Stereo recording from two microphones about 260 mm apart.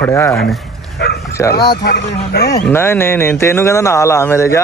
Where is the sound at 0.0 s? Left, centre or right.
Centre.